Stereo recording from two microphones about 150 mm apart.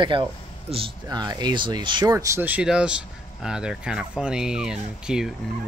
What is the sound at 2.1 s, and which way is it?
Speech, 20° right (ahead or behind).